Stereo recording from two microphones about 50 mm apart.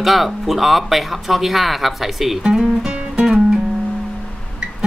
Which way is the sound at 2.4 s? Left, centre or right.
Centre.